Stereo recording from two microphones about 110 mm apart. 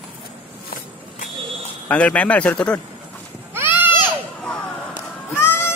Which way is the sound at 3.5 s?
20° right (ahead or behind).